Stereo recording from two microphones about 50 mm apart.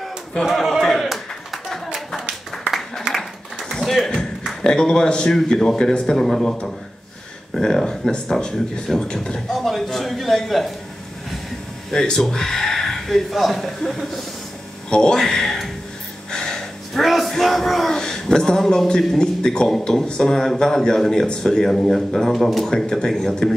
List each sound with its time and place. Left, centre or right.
0.5 s clapping: centre
3.8 s speech: centre
9.5 s a man's voice: centre
11.9 s speech: centre
16.3 s gasp: centre
17.9 s a man's voice: centre